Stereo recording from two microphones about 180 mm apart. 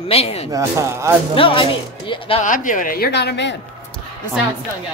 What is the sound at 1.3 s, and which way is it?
Speech, 30° left (ahead or behind).